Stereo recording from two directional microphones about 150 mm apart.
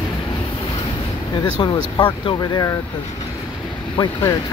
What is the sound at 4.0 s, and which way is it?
Speech, 35° left (ahead or behind).